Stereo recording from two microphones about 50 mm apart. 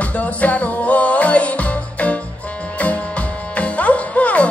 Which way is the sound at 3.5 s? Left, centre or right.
Left.